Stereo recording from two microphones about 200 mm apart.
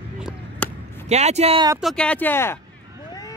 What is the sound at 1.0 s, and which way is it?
Speech, 35° right (ahead or behind).